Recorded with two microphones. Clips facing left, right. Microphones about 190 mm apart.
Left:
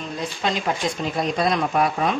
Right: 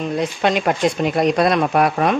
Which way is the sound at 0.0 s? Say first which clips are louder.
Right 7 dB; 65° right (ahead or behind).